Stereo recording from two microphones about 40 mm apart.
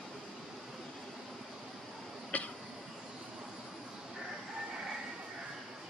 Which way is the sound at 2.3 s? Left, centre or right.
Left.